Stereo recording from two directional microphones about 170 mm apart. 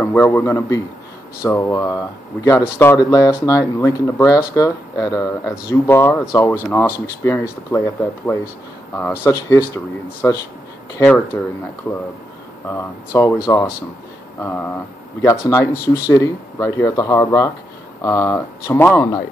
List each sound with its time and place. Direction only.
0.0 s speech: 10° left (ahead or behind)
11.9 s speech: 5° left (ahead or behind)